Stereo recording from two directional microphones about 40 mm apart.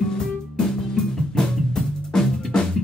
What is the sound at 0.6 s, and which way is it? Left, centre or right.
Drum, centre.